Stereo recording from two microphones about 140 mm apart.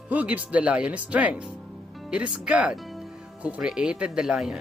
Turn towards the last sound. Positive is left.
turn(degrees=-5)  # may be behind; listen again after turning